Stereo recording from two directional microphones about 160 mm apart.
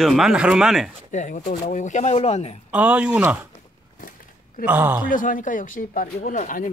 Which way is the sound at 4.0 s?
60° left (ahead or behind).